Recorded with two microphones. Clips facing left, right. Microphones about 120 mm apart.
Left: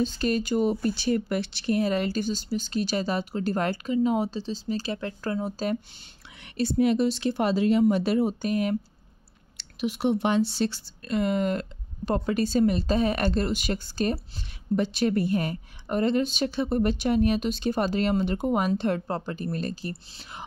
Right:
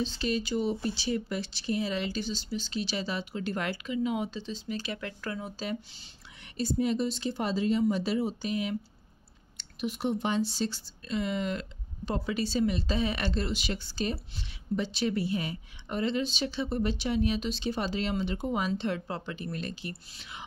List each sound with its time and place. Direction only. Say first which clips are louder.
0.0 s a woman's voice: left 5 dB; 50° left (ahead or behind)
6.5 s speech: left 6 dB; 70° left (ahead or behind); by 8.7 s 50° left (ahead or behind)
9.6 s a woman's voice: left 5 dB; 80° left; by 20.4 s 40° left (ahead or behind)